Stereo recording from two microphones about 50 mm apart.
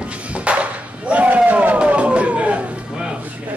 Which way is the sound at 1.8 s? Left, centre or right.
Right.